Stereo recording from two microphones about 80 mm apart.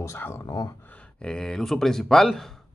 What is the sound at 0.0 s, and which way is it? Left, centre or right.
Speech, left.